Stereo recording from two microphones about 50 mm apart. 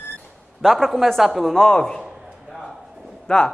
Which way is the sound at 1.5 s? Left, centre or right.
Centre.